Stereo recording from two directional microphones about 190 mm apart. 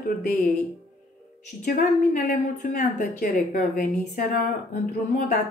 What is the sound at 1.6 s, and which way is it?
A woman's voice, 50° left (ahead or behind).